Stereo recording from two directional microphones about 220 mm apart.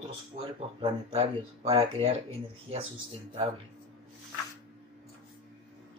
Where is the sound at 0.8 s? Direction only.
25° right (ahead or behind).